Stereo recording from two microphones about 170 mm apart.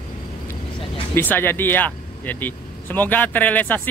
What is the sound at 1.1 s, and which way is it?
Speech, 10° left (ahead or behind).